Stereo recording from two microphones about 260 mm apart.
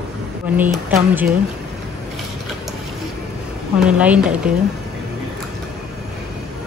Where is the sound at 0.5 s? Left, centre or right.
Centre.